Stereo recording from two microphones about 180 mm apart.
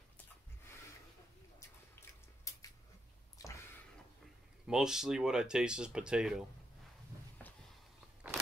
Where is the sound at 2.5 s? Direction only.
15° left (ahead or behind).